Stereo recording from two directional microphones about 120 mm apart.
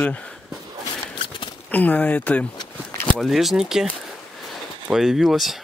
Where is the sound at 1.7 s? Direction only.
15° left (ahead or behind).